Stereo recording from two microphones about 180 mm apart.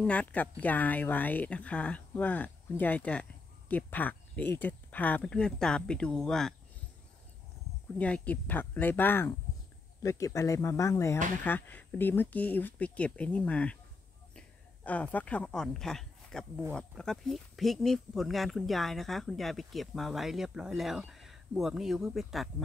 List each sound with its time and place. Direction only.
0.0 s speech: 5° left (ahead or behind)
8.0 s speech: 10° left (ahead or behind)